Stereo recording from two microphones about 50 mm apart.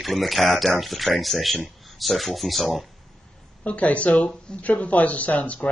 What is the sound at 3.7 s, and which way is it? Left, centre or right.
Speech, left.